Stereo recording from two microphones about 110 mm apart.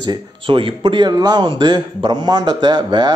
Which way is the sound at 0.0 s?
45° right (ahead or behind).